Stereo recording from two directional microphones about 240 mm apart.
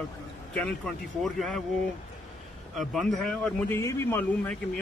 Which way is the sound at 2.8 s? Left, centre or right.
Centre.